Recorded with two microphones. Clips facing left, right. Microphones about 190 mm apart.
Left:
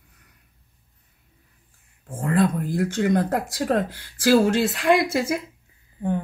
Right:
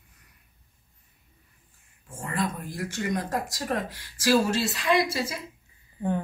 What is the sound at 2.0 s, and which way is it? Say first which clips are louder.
Speech: left 9 dB; 60° left (ahead or behind).